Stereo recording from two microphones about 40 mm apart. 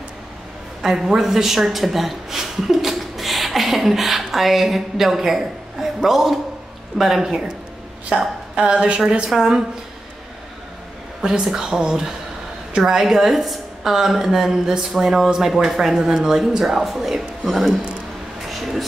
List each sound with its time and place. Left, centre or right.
0.8 s speech: centre
8.1 s a woman's voice: right
9.3 s speech: centre
11.4 s speech: centre
18.5 s a sound: centre